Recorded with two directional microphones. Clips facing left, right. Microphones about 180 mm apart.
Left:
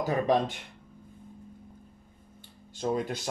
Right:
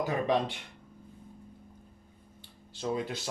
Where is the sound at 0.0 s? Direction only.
40° left (ahead or behind).